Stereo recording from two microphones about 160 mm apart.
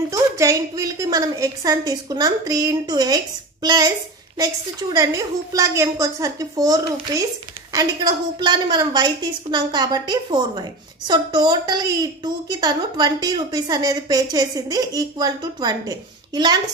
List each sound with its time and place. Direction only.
0.1 s a woman's voice: 20° right (ahead or behind)